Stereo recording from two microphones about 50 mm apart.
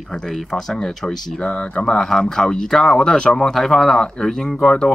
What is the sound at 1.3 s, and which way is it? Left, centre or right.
Speech, centre.